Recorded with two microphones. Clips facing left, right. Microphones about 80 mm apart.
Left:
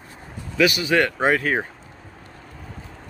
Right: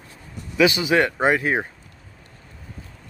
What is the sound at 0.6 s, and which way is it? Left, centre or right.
Speech, right.